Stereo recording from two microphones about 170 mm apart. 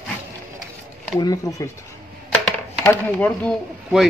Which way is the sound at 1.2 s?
20° left (ahead or behind).